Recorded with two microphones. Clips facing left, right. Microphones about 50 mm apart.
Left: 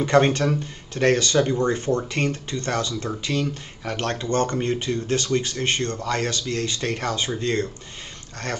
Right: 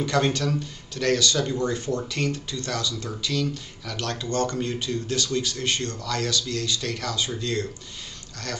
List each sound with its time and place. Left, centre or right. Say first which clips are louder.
0.0 s speech: left 5 dB; left